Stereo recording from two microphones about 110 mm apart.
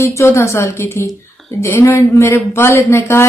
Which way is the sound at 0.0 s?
25° left (ahead or behind).